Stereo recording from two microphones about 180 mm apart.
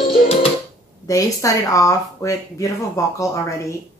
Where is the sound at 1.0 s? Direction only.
20° left (ahead or behind).